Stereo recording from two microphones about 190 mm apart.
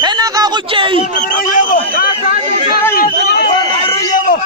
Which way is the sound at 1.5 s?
40° left (ahead or behind).